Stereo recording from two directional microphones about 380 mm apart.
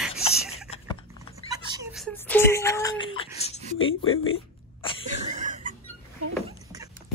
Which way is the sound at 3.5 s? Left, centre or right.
Centre.